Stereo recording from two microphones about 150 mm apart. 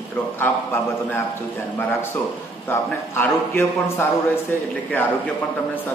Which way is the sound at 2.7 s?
15° left (ahead or behind).